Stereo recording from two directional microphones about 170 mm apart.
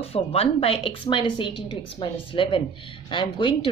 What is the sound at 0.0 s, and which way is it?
A woman's voice, 35° left (ahead or behind).